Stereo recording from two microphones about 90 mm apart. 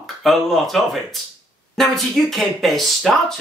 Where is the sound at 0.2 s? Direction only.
Centre (ahead or behind).